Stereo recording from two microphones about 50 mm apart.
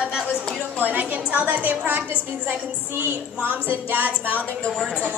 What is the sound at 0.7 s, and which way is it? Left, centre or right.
A woman's voice, right.